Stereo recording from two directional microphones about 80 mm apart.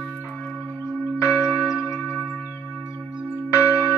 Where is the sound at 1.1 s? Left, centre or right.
Left.